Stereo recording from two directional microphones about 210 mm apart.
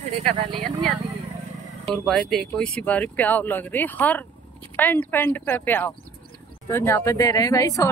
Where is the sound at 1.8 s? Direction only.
5° left (ahead or behind).